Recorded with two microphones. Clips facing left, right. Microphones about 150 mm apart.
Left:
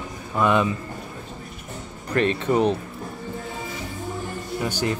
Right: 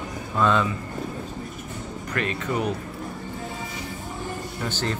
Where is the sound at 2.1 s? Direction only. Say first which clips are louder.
Left 7 dB; 30° left (ahead or behind).